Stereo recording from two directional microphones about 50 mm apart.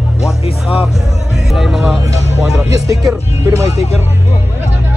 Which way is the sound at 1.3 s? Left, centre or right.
Centre.